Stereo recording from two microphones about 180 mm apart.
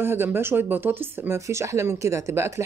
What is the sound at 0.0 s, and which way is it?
Speech, 10° right (ahead or behind).